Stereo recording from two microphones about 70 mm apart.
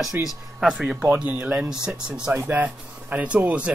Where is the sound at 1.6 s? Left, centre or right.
Centre.